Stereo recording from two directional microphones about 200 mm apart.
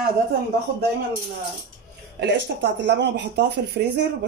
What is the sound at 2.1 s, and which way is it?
Speech, 60° right (ahead or behind).